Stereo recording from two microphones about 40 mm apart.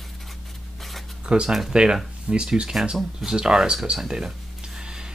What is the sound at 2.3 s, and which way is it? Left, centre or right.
Speech, right.